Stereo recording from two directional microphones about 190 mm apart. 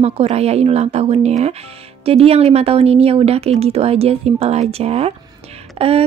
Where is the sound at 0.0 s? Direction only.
35° right (ahead or behind).